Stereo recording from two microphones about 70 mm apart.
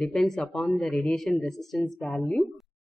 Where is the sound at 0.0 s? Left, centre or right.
Centre.